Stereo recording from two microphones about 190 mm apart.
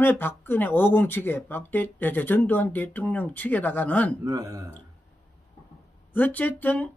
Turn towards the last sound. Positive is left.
turn(degrees=10)  # may be behind; listen again after turning